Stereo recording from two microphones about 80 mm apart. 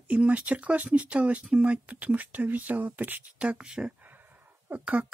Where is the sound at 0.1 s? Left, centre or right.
Centre.